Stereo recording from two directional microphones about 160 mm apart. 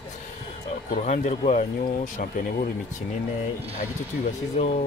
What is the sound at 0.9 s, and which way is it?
Speech, 45° left (ahead or behind).